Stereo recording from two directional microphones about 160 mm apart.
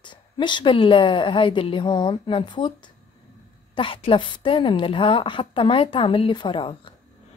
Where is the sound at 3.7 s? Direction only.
35° left (ahead or behind).